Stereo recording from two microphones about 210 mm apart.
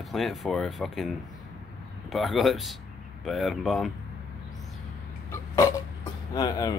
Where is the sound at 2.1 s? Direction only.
Centre (ahead or behind).